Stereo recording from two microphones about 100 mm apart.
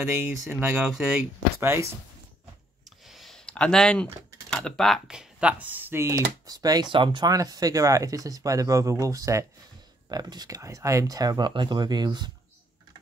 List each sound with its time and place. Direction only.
0.0 s speech: 25° right (ahead or behind)
0.8 s speech: 10° right (ahead or behind)
1.6 s speech: 25° right (ahead or behind)
3.1 s typing: centre (ahead or behind)
5.1 s speech: 10° right (ahead or behind); by 6.9 s 40° right (ahead or behind)
6.9 s speech: 55° right (ahead or behind)
7.3 s speech: 40° right (ahead or behind)